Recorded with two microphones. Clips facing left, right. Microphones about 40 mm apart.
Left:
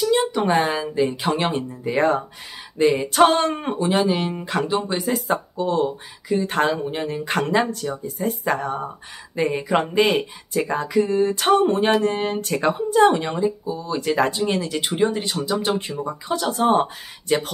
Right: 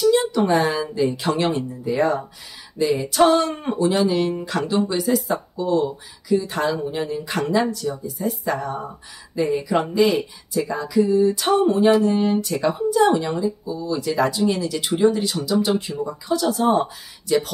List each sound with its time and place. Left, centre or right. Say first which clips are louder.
0.0 s speech: right 2 dB; left